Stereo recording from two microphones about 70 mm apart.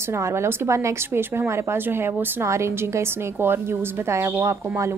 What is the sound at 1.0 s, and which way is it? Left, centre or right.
A woman's voice, right.